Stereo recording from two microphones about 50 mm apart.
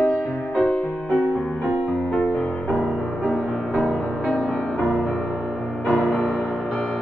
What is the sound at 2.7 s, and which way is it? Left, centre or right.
Music, centre.